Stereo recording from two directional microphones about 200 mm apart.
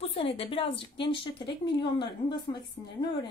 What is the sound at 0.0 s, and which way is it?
A woman's voice, 30° left (ahead or behind).